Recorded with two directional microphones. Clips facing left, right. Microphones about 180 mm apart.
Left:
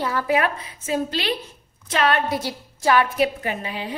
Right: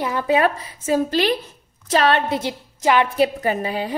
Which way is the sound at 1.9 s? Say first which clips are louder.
Right 3 dB; 30° right (ahead or behind).